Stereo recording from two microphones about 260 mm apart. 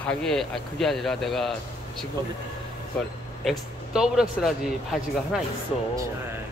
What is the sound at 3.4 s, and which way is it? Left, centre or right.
Speech, centre.